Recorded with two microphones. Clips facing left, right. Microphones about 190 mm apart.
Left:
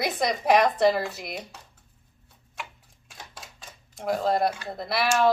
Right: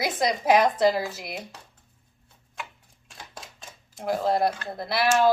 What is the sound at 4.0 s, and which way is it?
Speech, centre (ahead or behind).